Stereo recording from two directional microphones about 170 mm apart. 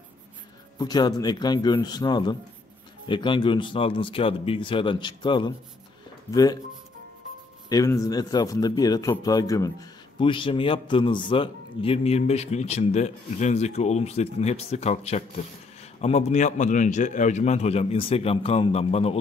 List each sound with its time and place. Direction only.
0.7 s speech: 25° left (ahead or behind)
7.7 s a man's voice: 20° left (ahead or behind); by 19.1 s 35° left (ahead or behind)